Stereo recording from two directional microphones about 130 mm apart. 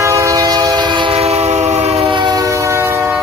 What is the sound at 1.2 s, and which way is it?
Train, 55° right (ahead or behind).